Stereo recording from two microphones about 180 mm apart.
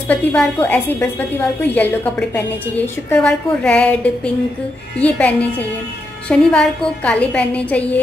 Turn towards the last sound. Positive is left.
turn(degrees=10)  # may be behind; listen again after turning